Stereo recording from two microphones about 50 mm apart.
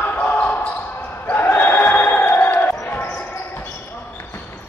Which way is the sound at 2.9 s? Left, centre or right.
Left.